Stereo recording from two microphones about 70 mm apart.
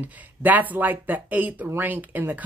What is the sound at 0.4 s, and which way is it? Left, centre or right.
Speech, right.